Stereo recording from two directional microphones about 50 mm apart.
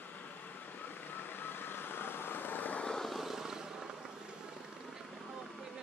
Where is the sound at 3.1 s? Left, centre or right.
Centre.